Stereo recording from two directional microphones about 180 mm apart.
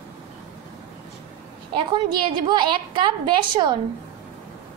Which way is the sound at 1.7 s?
25° right (ahead or behind).